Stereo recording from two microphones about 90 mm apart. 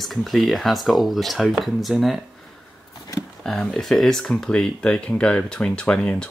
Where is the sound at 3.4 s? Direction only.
5° left (ahead or behind).